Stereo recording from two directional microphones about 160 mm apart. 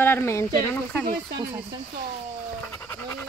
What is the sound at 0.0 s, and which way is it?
Speech, 15° left (ahead or behind).